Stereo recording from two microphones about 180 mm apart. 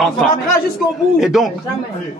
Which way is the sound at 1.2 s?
Centre (ahead or behind).